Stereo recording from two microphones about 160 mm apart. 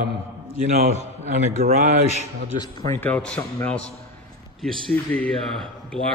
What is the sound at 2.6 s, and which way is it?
Speech, 15° left (ahead or behind).